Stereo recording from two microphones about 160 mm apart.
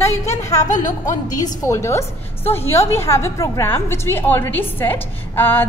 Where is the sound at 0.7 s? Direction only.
50° left (ahead or behind).